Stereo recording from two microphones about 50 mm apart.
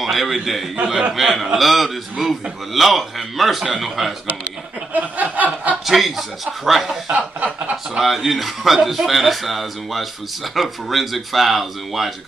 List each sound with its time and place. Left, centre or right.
0.0 s speech: centre
4.9 s snicker: right
5.9 s speech: centre
7.1 s a sound: right
8.0 s speech: centre